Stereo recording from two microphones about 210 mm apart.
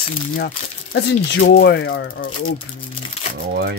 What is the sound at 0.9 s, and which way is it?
Speech, 55° left (ahead or behind).